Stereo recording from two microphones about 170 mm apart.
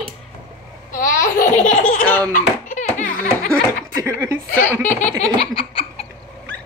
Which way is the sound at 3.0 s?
55° left (ahead or behind).